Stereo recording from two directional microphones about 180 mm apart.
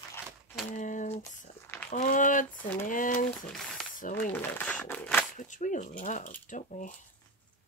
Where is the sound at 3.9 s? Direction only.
45° left (ahead or behind).